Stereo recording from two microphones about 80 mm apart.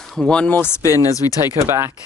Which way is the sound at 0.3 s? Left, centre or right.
Centre.